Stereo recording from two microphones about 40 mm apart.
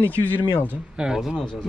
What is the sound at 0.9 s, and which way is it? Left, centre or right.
Speech, centre.